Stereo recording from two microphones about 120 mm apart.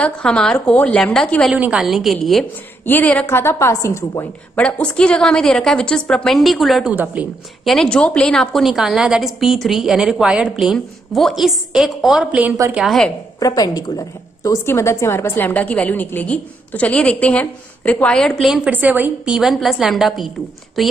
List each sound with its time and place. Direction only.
0.0 s a woman's voice: 5° left (ahead or behind)
1.5 s a woman's voice: 10° right (ahead or behind)
2.8 s a woman's voice: 15° left (ahead or behind)
4.6 s a woman's voice: 10° left (ahead or behind)
6.9 s a woman's voice: 10° right (ahead or behind)
7.6 s a woman's voice: 5° left (ahead or behind)
12.7 s a woman's voice: centre (ahead or behind)
13.4 s a woman's voice: 30° left (ahead or behind); by 19.3 s 15° right (ahead or behind)
19.3 s a woman's voice: centre (ahead or behind)